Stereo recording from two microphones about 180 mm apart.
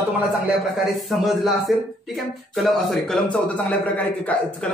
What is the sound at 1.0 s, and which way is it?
Speech, centre (ahead or behind).